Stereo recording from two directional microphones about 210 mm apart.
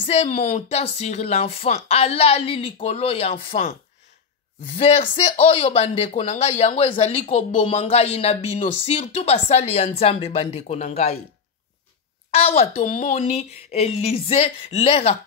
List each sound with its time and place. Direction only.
0.0 s speech: 30° left (ahead or behind)
4.7 s speech: 30° left (ahead or behind)
12.3 s speech: 30° left (ahead or behind)